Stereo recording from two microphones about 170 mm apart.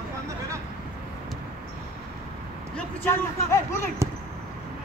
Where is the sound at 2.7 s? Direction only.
15° left (ahead or behind).